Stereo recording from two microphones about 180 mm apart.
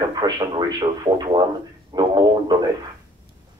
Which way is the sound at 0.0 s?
20° right (ahead or behind).